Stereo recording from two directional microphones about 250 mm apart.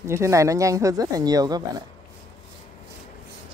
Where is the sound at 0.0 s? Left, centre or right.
Centre.